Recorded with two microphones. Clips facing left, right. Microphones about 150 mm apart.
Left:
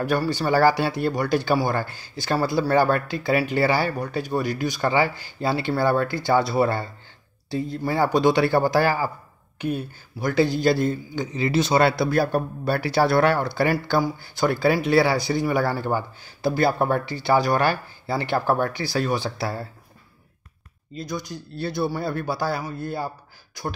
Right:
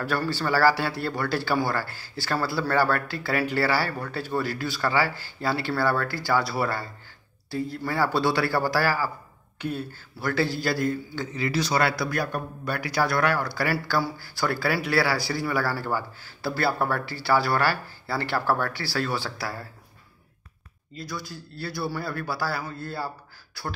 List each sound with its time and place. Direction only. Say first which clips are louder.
0.0 s a man's voice: left 4 dB; 15° left (ahead or behind)
20.9 s a man's voice: left 5 dB; 20° left (ahead or behind)